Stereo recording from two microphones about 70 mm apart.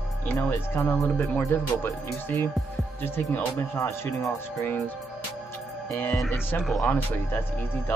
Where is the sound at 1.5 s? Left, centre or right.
Left.